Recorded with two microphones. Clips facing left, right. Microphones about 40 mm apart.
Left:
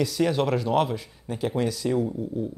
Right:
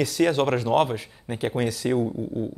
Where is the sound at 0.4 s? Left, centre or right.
Right.